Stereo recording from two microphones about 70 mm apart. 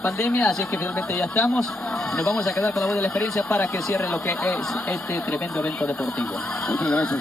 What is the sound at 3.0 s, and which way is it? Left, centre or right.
Speech, left.